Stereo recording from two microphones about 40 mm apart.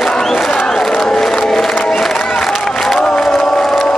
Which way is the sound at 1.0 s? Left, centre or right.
Centre.